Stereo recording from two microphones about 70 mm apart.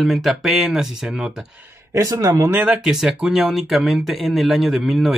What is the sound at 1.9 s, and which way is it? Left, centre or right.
Speech, right.